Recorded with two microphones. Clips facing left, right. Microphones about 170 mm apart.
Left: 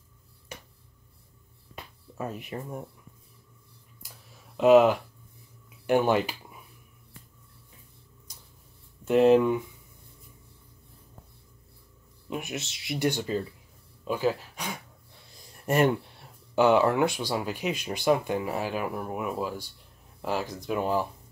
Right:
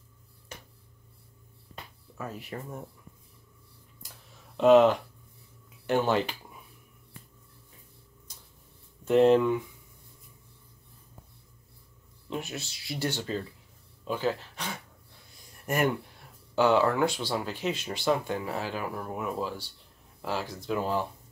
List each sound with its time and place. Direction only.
2.1 s speech: 20° left (ahead or behind)
4.6 s speech: 5° left (ahead or behind)
9.0 s speech: 5° left (ahead or behind)
12.3 s speech: 15° left (ahead or behind)
15.6 s speech: 25° left (ahead or behind)